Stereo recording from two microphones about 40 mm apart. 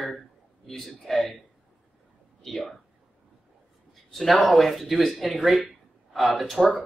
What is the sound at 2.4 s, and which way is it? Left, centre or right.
Speech, centre.